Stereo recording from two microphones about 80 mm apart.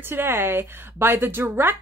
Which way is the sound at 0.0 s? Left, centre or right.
Right.